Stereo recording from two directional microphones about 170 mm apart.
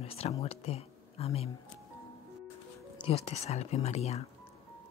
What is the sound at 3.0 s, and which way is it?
Speech, 35° left (ahead or behind).